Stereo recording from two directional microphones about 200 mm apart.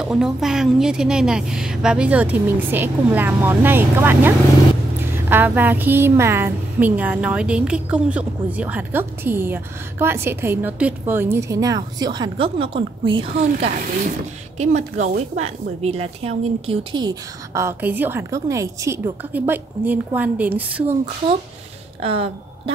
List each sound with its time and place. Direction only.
0.0 s a woman's voice: centre (ahead or behind)
22.0 s speech: 30° right (ahead or behind)